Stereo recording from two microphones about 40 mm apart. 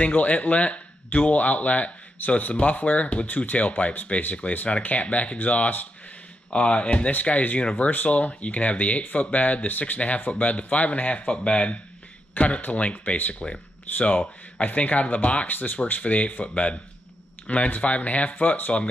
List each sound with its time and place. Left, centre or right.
0.0 s a man's voice: left
6.5 s speech: left
12.9 s speech: left
15.4 s speech: left